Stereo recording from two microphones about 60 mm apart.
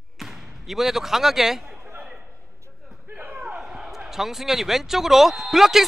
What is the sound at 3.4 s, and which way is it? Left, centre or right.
Speech, centre.